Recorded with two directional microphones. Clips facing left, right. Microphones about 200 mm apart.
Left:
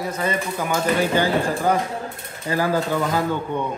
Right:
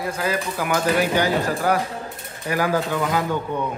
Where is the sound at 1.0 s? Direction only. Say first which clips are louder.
Left 1 dB; 10° right (ahead or behind).